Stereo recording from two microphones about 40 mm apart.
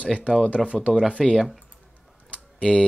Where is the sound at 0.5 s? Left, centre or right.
Right.